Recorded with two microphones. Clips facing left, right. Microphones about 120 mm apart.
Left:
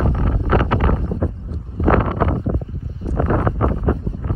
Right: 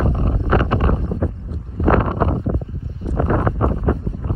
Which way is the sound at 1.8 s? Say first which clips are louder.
Even; 25° right (ahead or behind).